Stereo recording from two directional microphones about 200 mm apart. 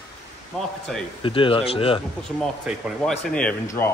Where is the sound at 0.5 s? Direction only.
Centre (ahead or behind).